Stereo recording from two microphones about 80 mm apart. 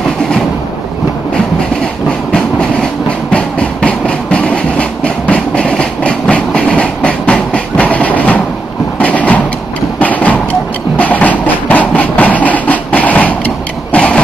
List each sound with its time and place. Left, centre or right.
2.3 s train: centre
9.0 s mechanisms: centre
9.9 s clip-clop: centre
11.0 s music: centre
13.9 s printer: centre